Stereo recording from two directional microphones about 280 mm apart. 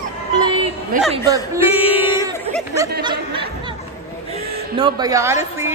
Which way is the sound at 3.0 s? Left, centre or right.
Centre.